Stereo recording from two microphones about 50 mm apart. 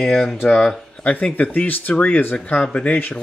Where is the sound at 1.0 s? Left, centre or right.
Left.